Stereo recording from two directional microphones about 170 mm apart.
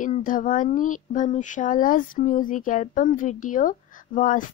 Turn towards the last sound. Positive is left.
turn(degrees=50)  # may be behind; listen again after turning